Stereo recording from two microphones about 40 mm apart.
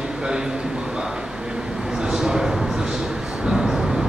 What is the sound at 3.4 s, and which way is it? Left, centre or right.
Vehicle, centre.